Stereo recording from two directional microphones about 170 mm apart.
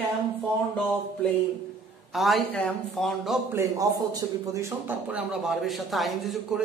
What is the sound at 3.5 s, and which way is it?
Speech, 15° right (ahead or behind).